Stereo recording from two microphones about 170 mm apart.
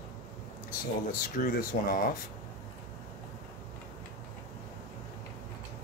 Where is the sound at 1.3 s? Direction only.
55° left (ahead or behind).